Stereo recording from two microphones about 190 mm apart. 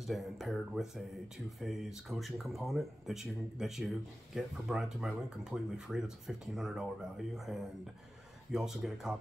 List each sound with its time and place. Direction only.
0.0 s speech: centre (ahead or behind)